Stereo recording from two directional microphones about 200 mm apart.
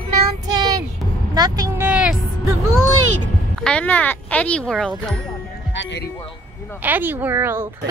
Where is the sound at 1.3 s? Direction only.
20° right (ahead or behind).